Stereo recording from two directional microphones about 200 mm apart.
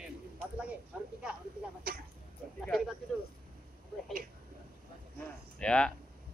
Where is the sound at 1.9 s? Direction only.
45° right (ahead or behind).